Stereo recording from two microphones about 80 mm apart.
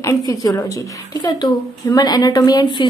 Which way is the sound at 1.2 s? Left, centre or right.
Left.